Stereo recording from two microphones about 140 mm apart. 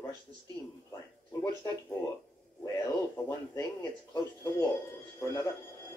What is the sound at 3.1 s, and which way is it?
Speech, 20° left (ahead or behind).